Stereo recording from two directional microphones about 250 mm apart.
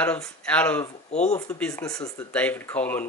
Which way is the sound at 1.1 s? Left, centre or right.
Left.